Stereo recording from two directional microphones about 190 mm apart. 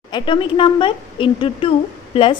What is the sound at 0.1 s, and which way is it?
A woman's voice, 25° left (ahead or behind).